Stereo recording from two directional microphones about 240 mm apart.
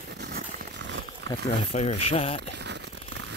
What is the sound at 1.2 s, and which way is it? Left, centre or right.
Speech, left.